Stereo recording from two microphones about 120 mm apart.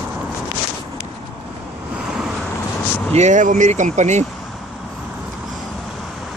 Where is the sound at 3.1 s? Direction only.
80° right.